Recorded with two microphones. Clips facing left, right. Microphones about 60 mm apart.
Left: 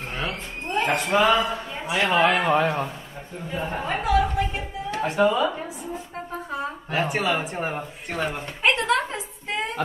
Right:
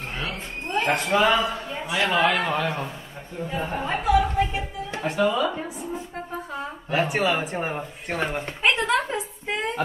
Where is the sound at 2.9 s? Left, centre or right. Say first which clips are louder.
Left 1 dB; centre.